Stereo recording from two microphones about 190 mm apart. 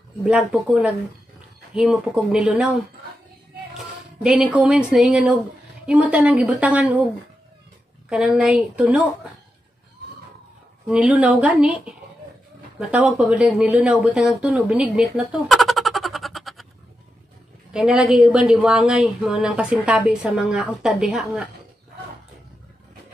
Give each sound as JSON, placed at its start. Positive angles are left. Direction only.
{"t": 0.2, "sound": "a woman's voice", "side_deg": -5}
{"t": 4.2, "sound": "a woman's voice", "side_deg": -5}
{"t": 8.1, "sound": "a woman's voice", "side_deg": -5}
{"t": 10.9, "sound": "a woman's voice", "side_deg": -5}
{"t": 17.7, "sound": "a woman's voice", "side_deg": -5}